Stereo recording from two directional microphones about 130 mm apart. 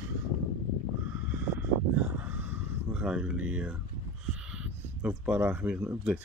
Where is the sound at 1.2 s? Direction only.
15° right (ahead or behind).